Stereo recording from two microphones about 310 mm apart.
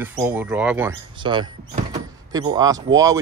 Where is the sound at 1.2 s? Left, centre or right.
Centre.